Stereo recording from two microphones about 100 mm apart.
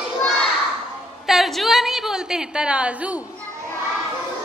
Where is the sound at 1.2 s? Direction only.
5° right (ahead or behind).